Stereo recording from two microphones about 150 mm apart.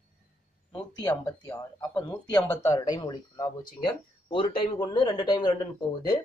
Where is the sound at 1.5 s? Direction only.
25° left (ahead or behind).